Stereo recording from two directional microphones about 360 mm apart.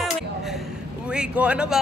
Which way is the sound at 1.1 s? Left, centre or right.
Centre.